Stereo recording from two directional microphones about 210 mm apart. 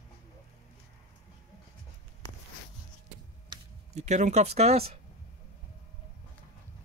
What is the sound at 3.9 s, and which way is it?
Speech, 35° right (ahead or behind).